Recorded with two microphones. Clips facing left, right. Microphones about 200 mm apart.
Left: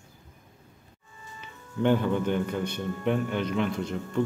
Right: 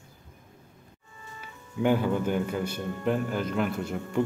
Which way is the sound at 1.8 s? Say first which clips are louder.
Left 1 dB; 5° right (ahead or behind).